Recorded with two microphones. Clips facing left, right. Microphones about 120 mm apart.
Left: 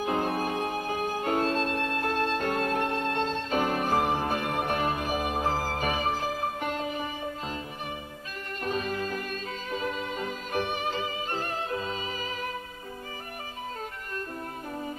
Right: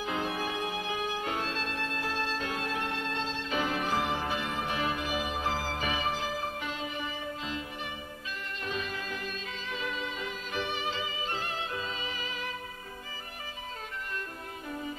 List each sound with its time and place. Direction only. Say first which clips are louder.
0.0 s music: left 5 dB; 45° left (ahead or behind)
8.6 s music: left 7 dB; 45° left (ahead or behind)
14.7 s music: even; 40° left (ahead or behind)